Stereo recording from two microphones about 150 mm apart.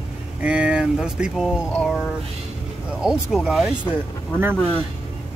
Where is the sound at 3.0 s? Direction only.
5° right (ahead or behind).